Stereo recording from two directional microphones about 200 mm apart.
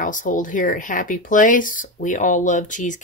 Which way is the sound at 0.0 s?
40° left (ahead or behind).